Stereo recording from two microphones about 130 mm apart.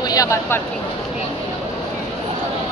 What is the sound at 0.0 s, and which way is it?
Speech, 30° left (ahead or behind).